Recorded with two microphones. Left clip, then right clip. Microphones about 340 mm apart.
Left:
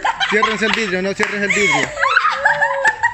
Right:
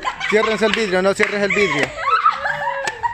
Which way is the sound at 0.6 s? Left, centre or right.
Right.